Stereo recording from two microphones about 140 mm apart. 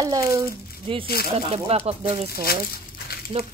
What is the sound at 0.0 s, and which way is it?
Speech, 25° right (ahead or behind).